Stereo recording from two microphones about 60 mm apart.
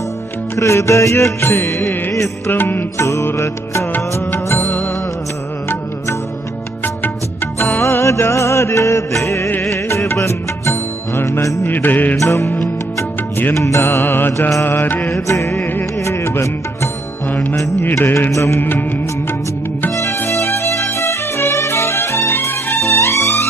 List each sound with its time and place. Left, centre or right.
0.6 s music: left
2.5 s music: left
3.0 s music: left
7.5 s music: left
11.6 s music: left
12.2 s music: left
13.6 s music: left
14.0 s music: left
15.1 s music: left
17.3 s music: left
17.9 s music: left
18.6 s music: left
20.0 s music: left